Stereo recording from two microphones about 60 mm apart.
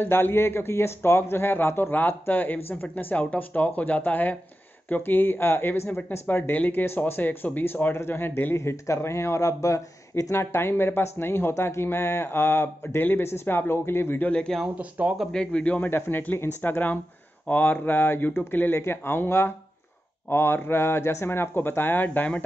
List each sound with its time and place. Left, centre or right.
0.0 s speech: left
8.5 s speech: left
10.3 s speech: left
14.8 s speech: right
15.3 s speech: centre